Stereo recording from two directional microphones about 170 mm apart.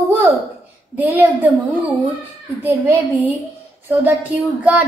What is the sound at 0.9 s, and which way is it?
A woman's voice, 10° right (ahead or behind).